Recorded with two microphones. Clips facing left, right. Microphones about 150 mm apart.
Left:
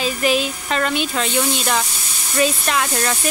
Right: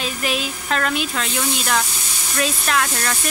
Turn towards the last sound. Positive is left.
turn(degrees=5)  # may be behind; listen again after turning